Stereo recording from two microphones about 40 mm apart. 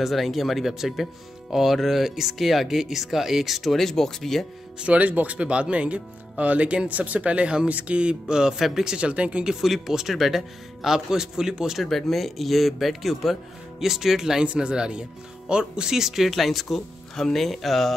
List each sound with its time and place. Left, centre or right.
0.0 s speech: centre
4.7 s speech: right
8.5 s speech: centre
8.9 s speech: right
9.5 s speech: centre
11.8 s speech: centre
14.4 s speech: right; by 17.9 s centre